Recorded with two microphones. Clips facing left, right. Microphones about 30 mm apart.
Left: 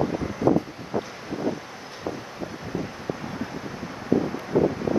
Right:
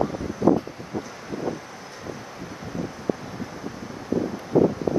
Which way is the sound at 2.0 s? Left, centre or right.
Centre.